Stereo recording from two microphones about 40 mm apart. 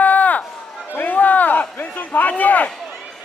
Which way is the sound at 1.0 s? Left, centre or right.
Left.